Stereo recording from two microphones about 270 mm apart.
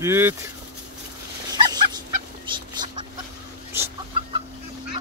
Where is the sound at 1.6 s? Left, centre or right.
Centre.